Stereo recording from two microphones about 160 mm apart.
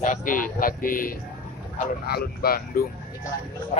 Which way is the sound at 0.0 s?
55° left (ahead or behind).